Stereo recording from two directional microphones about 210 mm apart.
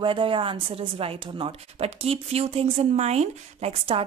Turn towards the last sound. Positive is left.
turn(degrees=-25)  # may be behind; listen again after turning